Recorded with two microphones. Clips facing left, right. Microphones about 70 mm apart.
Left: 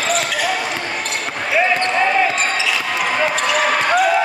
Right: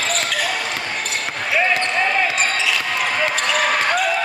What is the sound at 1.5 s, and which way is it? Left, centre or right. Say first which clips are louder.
Basketball bounce: left 2 dB; centre.